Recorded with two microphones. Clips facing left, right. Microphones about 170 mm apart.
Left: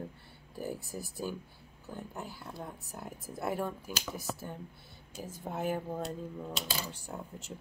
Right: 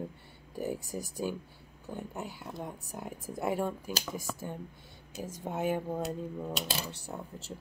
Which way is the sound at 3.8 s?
45° right (ahead or behind).